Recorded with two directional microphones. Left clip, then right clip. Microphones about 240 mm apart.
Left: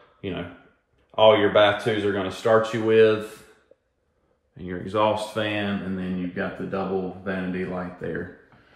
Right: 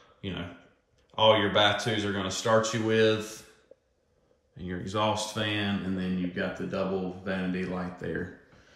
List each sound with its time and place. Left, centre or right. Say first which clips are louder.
1.1 s speech: left 6 dB; centre
4.6 s speech: left 6 dB; centre